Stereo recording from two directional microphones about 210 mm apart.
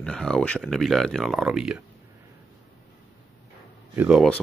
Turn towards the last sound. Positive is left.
turn(degrees=0)  # may be behind; listen again after turning